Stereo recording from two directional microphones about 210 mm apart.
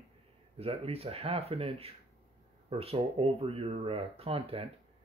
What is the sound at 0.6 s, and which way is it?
Speech, 30° right (ahead or behind).